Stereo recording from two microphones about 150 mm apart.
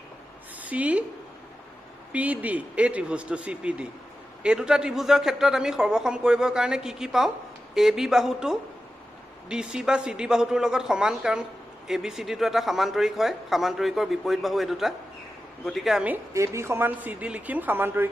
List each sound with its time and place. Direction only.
0.6 s speech: 10° right (ahead or behind)
2.1 s speech: 10° right (ahead or behind)
16.3 s speech: 20° right (ahead or behind)